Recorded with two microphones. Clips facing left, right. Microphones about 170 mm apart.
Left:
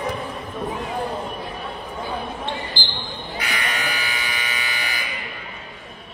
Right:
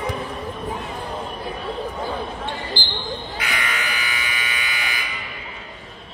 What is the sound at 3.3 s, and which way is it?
Sheep, 35° left (ahead or behind).